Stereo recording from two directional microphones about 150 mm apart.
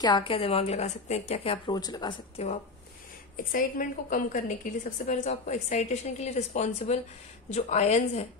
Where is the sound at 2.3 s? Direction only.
50° left (ahead or behind).